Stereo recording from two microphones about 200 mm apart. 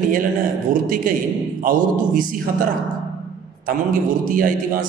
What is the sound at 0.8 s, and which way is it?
A man's voice, 45° right (ahead or behind).